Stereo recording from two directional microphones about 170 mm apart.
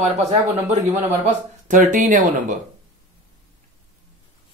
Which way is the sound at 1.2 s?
50° right (ahead or behind).